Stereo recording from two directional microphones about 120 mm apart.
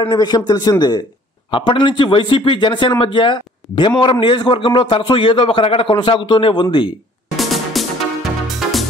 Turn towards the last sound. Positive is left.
turn(degrees=0)  # may be behind; listen again after turning